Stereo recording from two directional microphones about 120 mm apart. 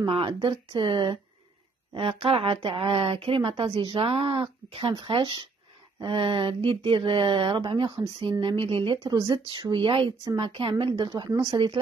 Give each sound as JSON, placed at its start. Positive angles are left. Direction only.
{"t": 0.0, "sound": "speech", "side_deg": -45}
{"t": 9.0, "sound": "speech", "side_deg": -35}
{"t": 11.5, "sound": "speech", "side_deg": -40}